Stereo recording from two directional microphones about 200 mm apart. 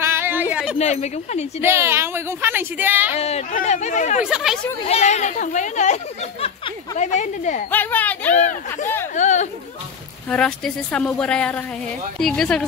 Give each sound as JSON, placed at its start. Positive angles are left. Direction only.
{"t": 0.0, "sound": "a sound", "side_deg": -10}
{"t": 0.7, "sound": "speech", "side_deg": 35}
{"t": 1.6, "sound": "a woman's voice", "side_deg": -10}
{"t": 3.2, "sound": "speech", "side_deg": 30}
{"t": 4.2, "sound": "speech", "side_deg": 0}
{"t": 4.8, "sound": "speech", "side_deg": 35}
{"t": 7.0, "sound": "speech", "side_deg": 35}
{"t": 7.7, "sound": "a child's voice", "side_deg": 10}
{"t": 8.4, "sound": "speech", "side_deg": 40}
{"t": 10.3, "sound": "speech", "side_deg": 5}